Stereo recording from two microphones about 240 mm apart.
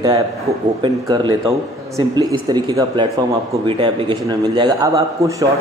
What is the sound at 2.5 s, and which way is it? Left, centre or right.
A man's voice, centre.